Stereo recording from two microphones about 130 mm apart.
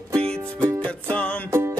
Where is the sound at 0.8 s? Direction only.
10° left (ahead or behind).